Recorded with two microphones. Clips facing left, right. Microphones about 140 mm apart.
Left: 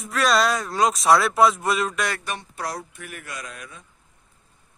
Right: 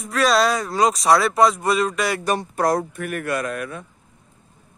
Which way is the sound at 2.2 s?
40° right (ahead or behind).